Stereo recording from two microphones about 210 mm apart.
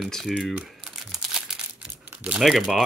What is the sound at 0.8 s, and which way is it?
Crumpling, centre (ahead or behind).